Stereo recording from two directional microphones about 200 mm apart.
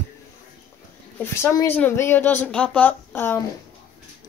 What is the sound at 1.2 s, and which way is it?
A woman's voice, 10° left (ahead or behind).